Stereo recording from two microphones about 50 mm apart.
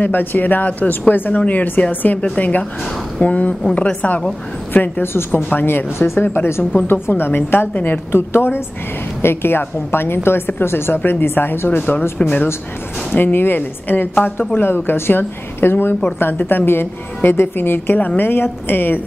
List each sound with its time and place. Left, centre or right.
0.0 s a woman's voice: left
5.0 s a woman's voice: left
6.7 s a woman's voice: left
8.1 s a woman's voice: left
12.2 s a woman's voice: left
13.1 s a woman's voice: left
14.5 s a woman's voice: left